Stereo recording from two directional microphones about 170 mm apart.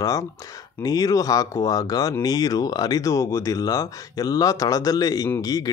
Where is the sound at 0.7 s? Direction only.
20° left (ahead or behind).